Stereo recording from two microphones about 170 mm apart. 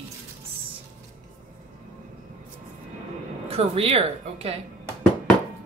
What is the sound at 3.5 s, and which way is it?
Speech, 35° right (ahead or behind).